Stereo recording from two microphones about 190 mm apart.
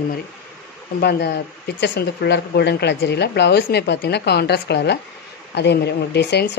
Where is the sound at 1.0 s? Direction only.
60° left (ahead or behind).